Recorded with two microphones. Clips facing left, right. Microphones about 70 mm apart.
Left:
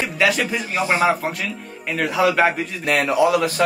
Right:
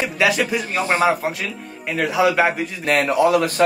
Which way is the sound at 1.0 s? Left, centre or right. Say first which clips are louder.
Even; centre.